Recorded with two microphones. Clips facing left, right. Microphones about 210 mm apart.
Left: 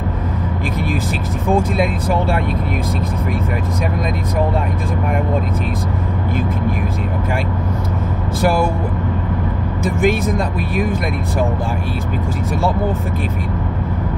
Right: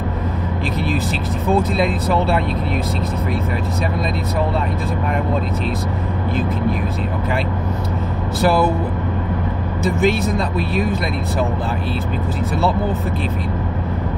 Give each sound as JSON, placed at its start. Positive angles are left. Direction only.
{"t": 1.5, "sound": "speech", "side_deg": 10}
{"t": 9.9, "sound": "speech", "side_deg": 50}